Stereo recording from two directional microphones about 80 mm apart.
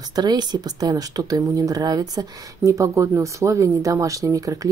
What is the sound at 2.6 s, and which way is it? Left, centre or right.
Speech, right.